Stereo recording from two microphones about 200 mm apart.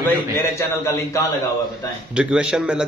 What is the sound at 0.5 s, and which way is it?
Speech, 15° left (ahead or behind).